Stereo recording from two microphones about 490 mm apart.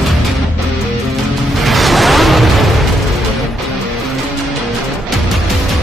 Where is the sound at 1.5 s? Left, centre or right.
Centre.